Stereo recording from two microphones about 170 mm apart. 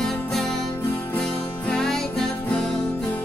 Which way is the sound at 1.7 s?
5° left (ahead or behind).